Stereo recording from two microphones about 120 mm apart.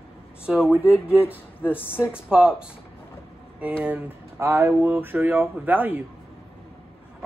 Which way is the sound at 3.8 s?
10° right (ahead or behind).